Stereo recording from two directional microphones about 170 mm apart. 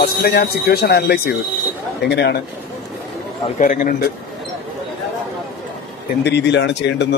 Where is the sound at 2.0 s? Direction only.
85° left.